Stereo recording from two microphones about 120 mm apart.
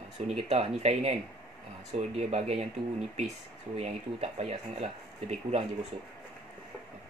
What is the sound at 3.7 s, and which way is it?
Speech, 60° right (ahead or behind).